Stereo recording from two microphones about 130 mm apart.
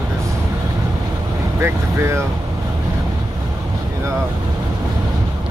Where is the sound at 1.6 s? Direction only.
20° right (ahead or behind).